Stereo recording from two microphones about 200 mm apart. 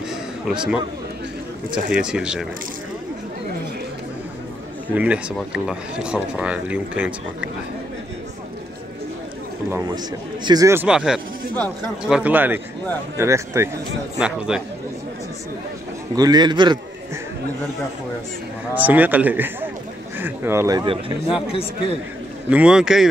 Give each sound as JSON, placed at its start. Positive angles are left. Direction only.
{"t": 0.1, "sound": "a sound", "side_deg": -5}
{"t": 1.9, "sound": "speech", "side_deg": -5}
{"t": 4.9, "sound": "speech", "side_deg": -5}
{"t": 9.7, "sound": "a man's voice", "side_deg": -15}
{"t": 16.2, "sound": "a man's voice", "side_deg": -20}
{"t": 18.8, "sound": "a man's voice", "side_deg": -10}
{"t": 21.5, "sound": "speech", "side_deg": 30}
{"t": 22.5, "sound": "speech", "side_deg": -5}